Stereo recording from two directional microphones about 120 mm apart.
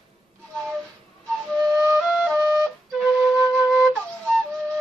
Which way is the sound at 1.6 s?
25° right (ahead or behind).